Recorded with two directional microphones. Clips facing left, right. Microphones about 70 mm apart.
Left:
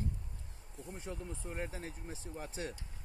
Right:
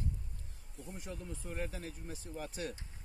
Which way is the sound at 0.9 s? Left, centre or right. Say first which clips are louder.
Left 1 dB; left.